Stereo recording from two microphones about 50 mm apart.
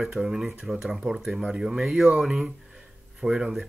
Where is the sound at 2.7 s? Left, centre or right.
Centre.